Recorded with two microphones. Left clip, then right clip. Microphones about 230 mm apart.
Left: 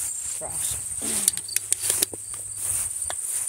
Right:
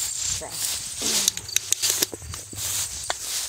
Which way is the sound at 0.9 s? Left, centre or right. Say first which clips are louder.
Right 8 dB; right.